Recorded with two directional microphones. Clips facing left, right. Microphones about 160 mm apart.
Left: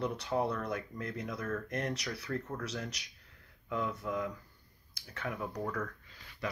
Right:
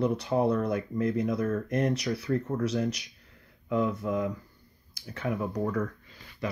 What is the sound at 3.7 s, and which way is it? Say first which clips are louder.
Speech: right 8 dB; 20° right (ahead or behind).